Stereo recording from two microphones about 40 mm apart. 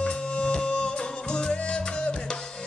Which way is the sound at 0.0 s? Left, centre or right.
Left.